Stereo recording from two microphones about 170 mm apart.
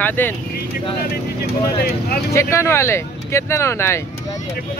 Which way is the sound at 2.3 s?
15° left (ahead or behind).